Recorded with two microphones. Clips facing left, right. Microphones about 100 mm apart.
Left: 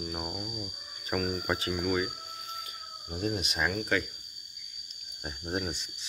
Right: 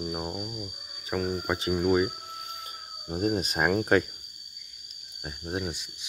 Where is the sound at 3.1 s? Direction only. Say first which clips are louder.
Right 5 dB; 35° right (ahead or behind).